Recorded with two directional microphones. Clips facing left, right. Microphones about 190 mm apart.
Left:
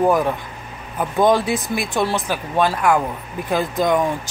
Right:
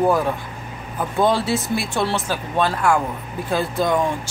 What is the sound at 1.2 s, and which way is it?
Speech, 15° left (ahead or behind).